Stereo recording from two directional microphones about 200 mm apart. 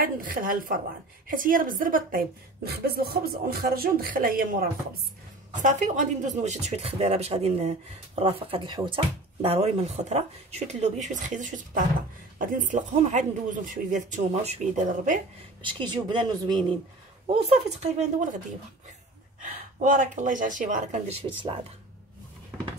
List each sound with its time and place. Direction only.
0.0 s a woman's voice: 45° right (ahead or behind)
15.6 s speech: 25° right (ahead or behind)
19.8 s speech: 40° right (ahead or behind)
21.4 s speech: 25° right (ahead or behind)